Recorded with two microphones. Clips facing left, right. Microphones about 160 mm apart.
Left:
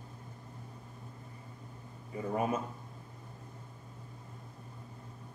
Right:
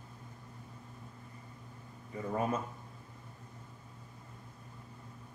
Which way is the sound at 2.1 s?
15° left (ahead or behind).